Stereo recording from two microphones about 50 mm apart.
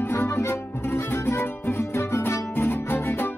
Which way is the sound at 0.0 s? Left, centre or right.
Left.